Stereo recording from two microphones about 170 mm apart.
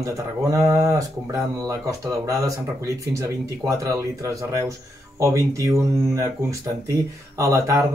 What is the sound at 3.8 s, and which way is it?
Speech, 20° right (ahead or behind).